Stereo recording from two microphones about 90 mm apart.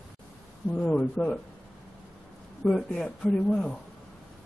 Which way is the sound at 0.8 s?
15° left (ahead or behind).